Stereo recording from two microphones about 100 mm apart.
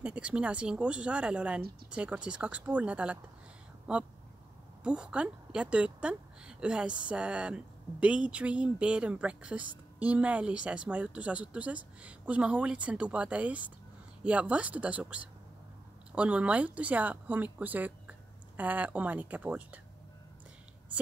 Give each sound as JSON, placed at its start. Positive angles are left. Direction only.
{"t": 0.0, "sound": "a woman's voice", "side_deg": -10}